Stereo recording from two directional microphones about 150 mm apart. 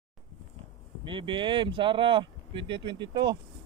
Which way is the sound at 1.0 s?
35° right (ahead or behind).